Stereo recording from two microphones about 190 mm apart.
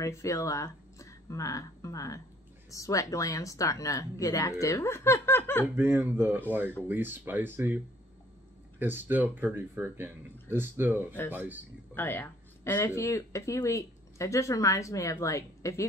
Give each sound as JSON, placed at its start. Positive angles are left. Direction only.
{"t": 0.0, "sound": "speech", "side_deg": 15}
{"t": 5.8, "sound": "speech", "side_deg": -10}
{"t": 11.9, "sound": "speech", "side_deg": 10}